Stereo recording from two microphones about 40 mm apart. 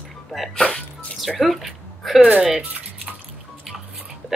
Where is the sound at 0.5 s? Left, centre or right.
Centre.